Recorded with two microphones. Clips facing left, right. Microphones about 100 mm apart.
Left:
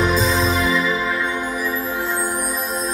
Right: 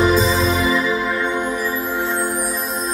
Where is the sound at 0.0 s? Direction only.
Centre (ahead or behind).